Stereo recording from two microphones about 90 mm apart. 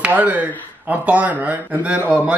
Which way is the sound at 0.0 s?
15° right (ahead or behind).